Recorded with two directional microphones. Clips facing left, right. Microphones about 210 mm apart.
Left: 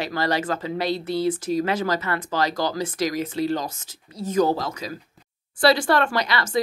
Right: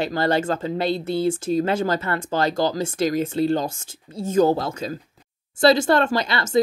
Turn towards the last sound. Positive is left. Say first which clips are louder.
# right 1 dB
turn(degrees=-25)  # may be behind; listen again after turning